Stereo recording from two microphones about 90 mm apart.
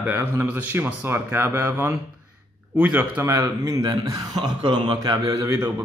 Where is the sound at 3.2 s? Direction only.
35° right (ahead or behind); by 5.0 s 60° right (ahead or behind).